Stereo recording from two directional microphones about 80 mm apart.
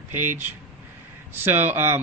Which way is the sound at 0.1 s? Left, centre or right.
Right.